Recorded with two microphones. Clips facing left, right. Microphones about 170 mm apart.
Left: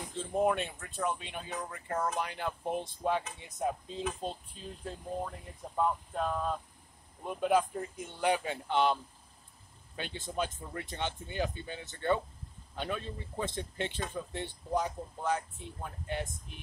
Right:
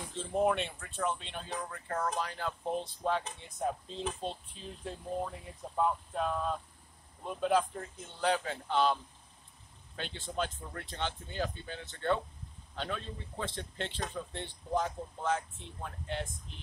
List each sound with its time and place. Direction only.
0.2 s speech: centre (ahead or behind)
5.8 s speech: centre (ahead or behind)